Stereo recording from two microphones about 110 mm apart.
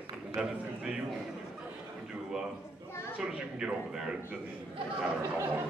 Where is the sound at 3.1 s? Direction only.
10° right (ahead or behind).